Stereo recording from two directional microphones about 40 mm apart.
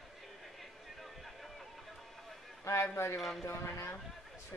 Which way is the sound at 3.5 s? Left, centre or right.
Left.